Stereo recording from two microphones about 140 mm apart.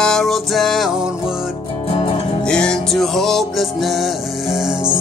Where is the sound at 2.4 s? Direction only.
5° left (ahead or behind).